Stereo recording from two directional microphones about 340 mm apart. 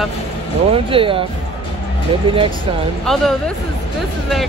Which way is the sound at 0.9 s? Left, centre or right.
Centre.